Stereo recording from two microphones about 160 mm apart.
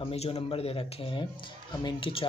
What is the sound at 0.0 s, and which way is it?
Speech, 40° left (ahead or behind).